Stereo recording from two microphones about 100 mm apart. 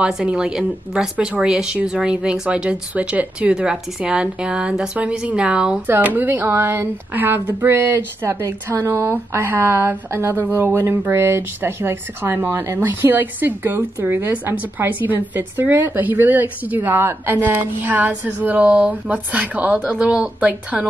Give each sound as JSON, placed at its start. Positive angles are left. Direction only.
{"t": 0.0, "sound": "a woman's voice", "side_deg": -10}